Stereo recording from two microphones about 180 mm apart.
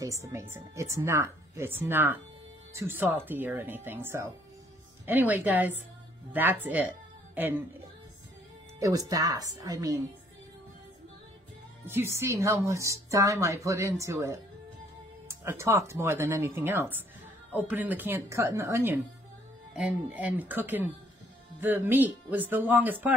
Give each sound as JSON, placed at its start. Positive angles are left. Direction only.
{"t": 0.0, "sound": "a woman's voice", "side_deg": -15}
{"t": 8.7, "sound": "speech", "side_deg": -20}
{"t": 11.8, "sound": "a woman's voice", "side_deg": -15}